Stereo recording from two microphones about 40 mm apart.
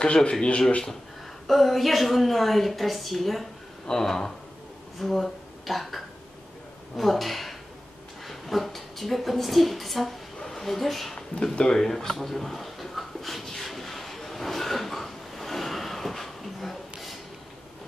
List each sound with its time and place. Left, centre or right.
0.0 s speech: left
1.5 s a woman's voice: centre
3.8 s speech: centre
5.0 s a woman's voice: centre
11.7 s a sound: centre